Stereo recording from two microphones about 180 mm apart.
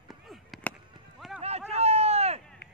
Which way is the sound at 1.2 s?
Centre (ahead or behind).